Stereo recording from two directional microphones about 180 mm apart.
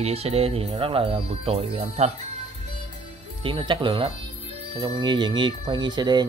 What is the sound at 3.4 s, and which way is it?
Speech, 30° right (ahead or behind).